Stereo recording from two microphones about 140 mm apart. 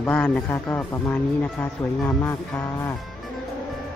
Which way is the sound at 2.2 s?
20° left (ahead or behind).